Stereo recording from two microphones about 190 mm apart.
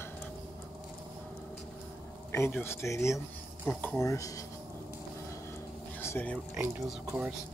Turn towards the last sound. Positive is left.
turn(degrees=-10)  # may be behind; listen again after turning